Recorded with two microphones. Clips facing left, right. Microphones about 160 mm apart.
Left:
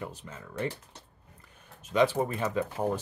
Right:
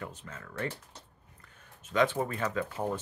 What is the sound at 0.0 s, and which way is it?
Speech, 10° left (ahead or behind).